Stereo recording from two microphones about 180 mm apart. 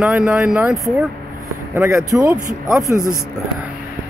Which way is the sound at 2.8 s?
20° right (ahead or behind).